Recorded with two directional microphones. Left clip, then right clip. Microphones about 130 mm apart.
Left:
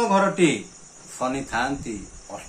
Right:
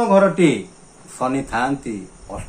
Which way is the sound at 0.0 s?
20° right (ahead or behind).